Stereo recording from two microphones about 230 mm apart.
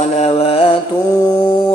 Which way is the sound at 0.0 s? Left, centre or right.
Left.